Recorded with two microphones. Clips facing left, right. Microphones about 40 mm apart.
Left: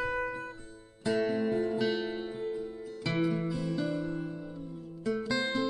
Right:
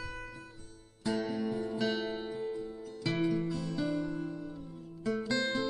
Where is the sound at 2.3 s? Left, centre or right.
Left.